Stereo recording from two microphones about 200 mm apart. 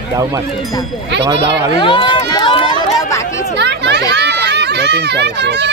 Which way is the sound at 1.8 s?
25° left (ahead or behind).